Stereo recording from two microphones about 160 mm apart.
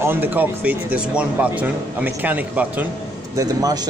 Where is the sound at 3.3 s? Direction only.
20° right (ahead or behind).